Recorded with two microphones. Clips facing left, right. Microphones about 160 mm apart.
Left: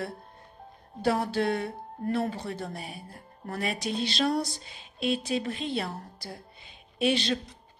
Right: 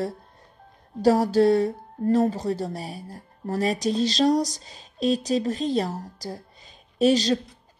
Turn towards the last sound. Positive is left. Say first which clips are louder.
# right 7 dB
turn(degrees=-40)  # may be behind; listen again after turning